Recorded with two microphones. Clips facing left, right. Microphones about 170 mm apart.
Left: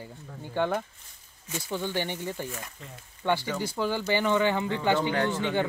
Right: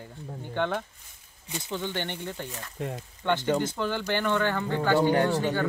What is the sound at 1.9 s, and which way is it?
Speech, 10° left (ahead or behind).